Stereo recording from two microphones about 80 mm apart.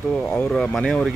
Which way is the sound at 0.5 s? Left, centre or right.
Centre.